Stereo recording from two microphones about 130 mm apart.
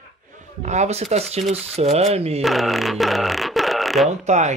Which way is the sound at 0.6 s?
60° right (ahead or behind).